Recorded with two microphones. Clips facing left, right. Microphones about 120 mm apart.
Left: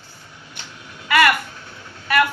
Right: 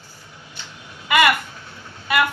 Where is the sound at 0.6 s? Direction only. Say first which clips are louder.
Even; 55° left (ahead or behind).